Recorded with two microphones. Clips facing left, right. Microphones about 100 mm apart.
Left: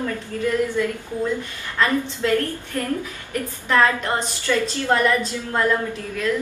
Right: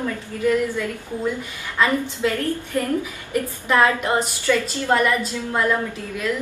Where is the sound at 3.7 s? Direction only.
15° right (ahead or behind).